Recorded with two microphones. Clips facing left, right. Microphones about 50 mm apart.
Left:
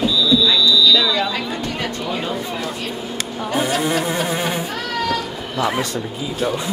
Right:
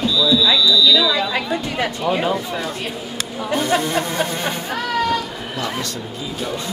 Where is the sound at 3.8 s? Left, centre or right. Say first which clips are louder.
Left 1 dB; centre.